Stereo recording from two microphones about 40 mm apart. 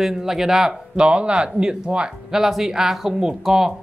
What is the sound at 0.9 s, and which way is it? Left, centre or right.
Speech, right.